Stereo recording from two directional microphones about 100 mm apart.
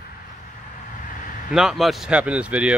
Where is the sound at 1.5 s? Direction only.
5° right (ahead or behind).